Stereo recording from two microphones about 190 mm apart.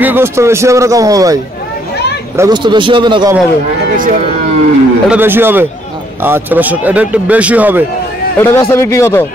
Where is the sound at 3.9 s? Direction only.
45° right (ahead or behind).